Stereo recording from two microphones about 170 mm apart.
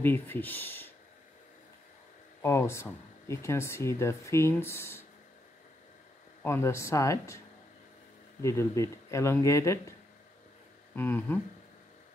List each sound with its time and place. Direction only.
0.0 s speech: 10° left (ahead or behind)
2.4 s speech: 15° left (ahead or behind)
6.4 s speech: 15° left (ahead or behind)
8.4 s speech: 15° left (ahead or behind)
11.0 s speech: 10° left (ahead or behind)